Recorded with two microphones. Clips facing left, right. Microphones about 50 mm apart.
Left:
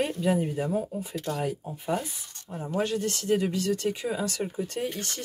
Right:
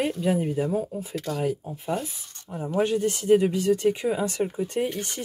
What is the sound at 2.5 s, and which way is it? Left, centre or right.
Speech, centre.